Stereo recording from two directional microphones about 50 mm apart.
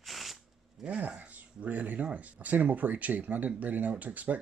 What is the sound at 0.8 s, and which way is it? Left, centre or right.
Speech, right.